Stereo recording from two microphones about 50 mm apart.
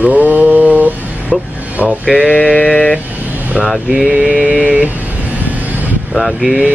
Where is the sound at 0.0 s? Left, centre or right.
Right.